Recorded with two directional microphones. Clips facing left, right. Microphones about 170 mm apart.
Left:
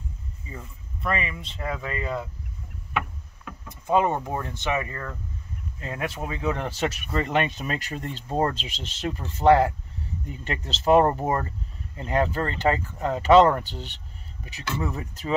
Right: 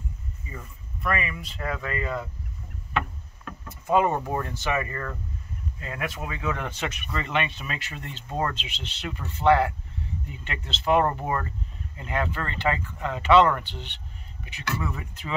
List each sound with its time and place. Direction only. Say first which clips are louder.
0.5 s speech: left 2 dB; 25° left (ahead or behind)
2.9 s boat: right 1 dB; 10° left (ahead or behind)
3.8 s speech: even; 15° left (ahead or behind)
5.8 s speech: left 2 dB; 30° left (ahead or behind)